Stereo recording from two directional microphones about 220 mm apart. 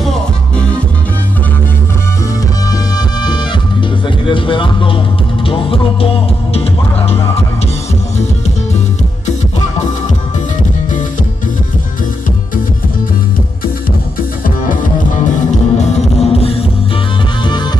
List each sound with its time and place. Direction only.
0.0 s music: 5° left (ahead or behind)
2.7 s music: 20° left (ahead or behind)
14.4 s music: 35° left (ahead or behind)